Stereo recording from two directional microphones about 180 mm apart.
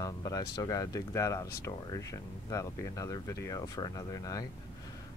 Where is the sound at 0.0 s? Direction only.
20° left (ahead or behind).